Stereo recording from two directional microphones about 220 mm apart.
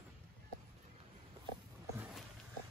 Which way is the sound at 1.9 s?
5° right (ahead or behind).